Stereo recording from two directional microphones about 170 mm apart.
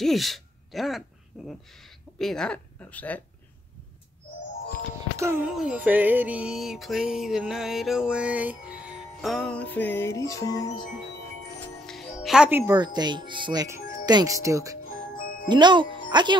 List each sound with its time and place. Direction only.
0.0 s speech: centre (ahead or behind)
5.1 s speech: 15° right (ahead or behind)
5.5 s music: 5° right (ahead or behind); by 10.7 s 20° left (ahead or behind)
11.6 s music: 5° left (ahead or behind)
12.7 s speech: 25° right (ahead or behind)
14.9 s music: 55° left (ahead or behind)
15.4 s speech: 25° right (ahead or behind)